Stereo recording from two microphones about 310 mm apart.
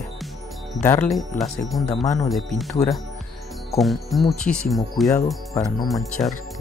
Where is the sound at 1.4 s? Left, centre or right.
Centre.